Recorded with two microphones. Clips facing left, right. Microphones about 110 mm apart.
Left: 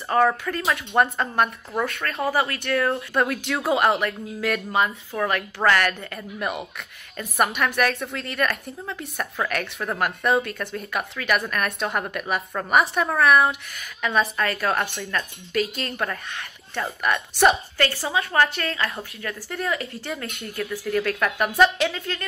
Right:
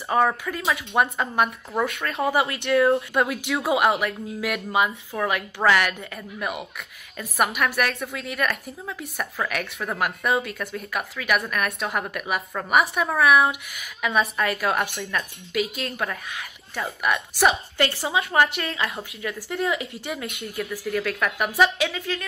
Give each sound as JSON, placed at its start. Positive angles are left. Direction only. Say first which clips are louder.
{"t": 0.1, "sound": "a woman's voice", "louder": "left 1 dB", "side_deg": -10}
{"t": 2.1, "sound": "a woman's voice", "louder": "right 1 dB", "side_deg": -25}
{"t": 17.7, "sound": "speech", "louder": "even", "side_deg": -20}
{"t": 18.9, "sound": "a woman's voice", "louder": "right 1 dB", "side_deg": 0}
{"t": 19.5, "sound": "a woman's voice", "louder": "right 1 dB", "side_deg": -20}